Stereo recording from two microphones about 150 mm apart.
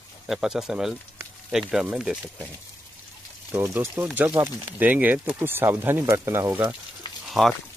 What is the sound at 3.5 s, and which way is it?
Speech, 15° right (ahead or behind).